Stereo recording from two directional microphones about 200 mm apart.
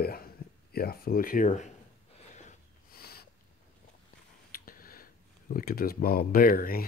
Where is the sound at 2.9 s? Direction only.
50° left (ahead or behind).